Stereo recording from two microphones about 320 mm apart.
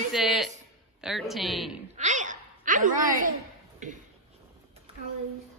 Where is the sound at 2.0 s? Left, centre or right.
Right.